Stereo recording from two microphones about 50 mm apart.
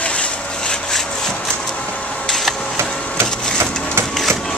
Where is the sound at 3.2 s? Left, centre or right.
Right.